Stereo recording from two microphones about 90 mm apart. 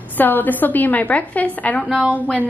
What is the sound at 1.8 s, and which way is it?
Speech, 5° right (ahead or behind).